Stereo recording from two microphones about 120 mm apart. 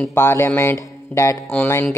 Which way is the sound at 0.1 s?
20° left (ahead or behind).